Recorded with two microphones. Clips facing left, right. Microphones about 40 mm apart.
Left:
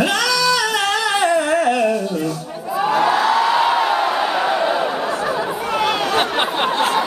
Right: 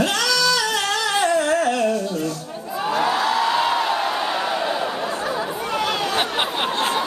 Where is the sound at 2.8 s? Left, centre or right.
Centre.